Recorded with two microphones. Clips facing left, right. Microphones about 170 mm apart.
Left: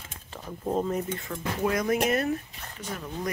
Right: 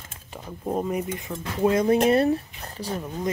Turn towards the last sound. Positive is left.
turn(degrees=-25)  # may be behind; listen again after turning